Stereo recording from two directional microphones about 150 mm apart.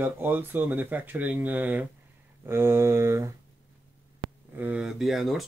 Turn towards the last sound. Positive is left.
turn(degrees=0)  # may be behind; listen again after turning